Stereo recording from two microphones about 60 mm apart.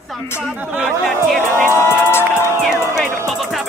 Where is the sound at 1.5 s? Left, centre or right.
Left.